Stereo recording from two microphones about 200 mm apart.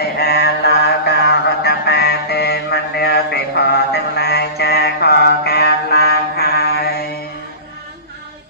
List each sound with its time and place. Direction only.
0.2 s mantra: 55° left (ahead or behind)